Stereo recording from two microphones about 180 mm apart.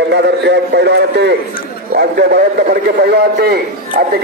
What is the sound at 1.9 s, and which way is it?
A man's voice, 60° right (ahead or behind).